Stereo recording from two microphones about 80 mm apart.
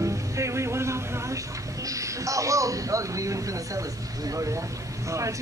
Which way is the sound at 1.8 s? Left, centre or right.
Right.